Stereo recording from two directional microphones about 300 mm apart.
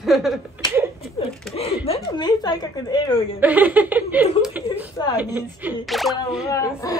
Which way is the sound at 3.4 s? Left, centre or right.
Centre.